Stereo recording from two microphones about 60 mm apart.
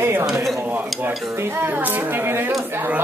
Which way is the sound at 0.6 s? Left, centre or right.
Right.